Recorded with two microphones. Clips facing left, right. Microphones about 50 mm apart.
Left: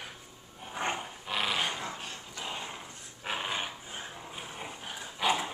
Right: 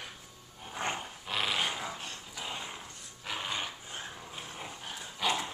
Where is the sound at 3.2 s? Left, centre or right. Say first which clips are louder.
Left 2 dB; left.